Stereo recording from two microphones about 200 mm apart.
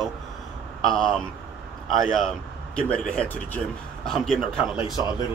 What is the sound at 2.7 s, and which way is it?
Speech, 5° left (ahead or behind).